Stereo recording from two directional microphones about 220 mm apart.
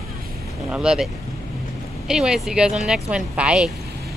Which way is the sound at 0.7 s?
5° right (ahead or behind).